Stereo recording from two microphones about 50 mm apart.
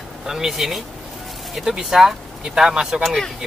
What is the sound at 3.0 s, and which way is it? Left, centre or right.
Speech, centre.